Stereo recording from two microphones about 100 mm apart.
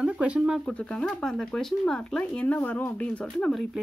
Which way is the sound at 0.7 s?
10° left (ahead or behind).